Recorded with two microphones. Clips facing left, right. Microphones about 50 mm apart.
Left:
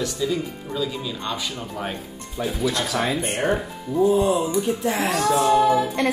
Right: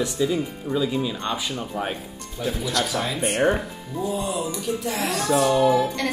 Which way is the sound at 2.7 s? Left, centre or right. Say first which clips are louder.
Left 1 dB; left.